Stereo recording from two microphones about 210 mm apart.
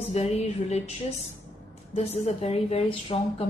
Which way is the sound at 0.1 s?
30° left (ahead or behind).